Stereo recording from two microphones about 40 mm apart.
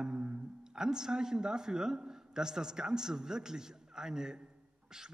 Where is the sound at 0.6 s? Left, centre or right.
Centre.